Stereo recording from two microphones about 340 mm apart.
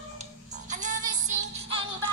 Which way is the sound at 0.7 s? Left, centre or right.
Right.